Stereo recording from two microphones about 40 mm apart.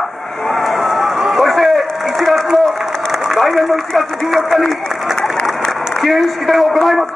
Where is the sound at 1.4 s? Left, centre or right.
Centre.